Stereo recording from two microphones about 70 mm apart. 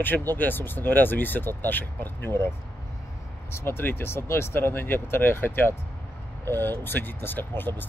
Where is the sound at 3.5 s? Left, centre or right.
Left.